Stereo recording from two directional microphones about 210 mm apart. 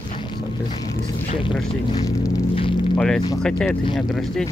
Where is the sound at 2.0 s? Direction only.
20° left (ahead or behind).